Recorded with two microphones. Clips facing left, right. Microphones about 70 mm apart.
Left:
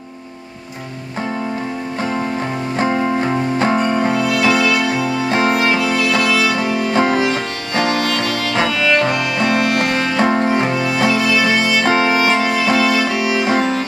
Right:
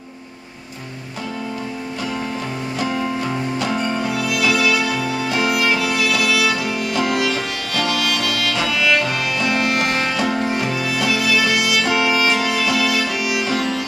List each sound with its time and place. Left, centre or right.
2.8 s music: left